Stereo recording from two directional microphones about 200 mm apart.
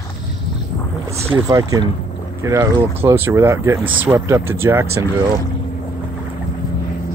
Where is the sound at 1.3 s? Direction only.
15° right (ahead or behind).